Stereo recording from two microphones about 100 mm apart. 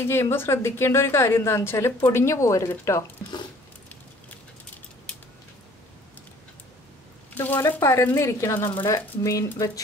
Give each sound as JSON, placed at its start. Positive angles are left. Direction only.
{"t": 0.0, "sound": "a woman's voice", "side_deg": 25}
{"t": 7.3, "sound": "a woman's voice", "side_deg": 25}